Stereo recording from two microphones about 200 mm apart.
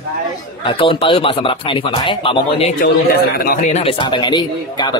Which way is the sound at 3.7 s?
30° left (ahead or behind).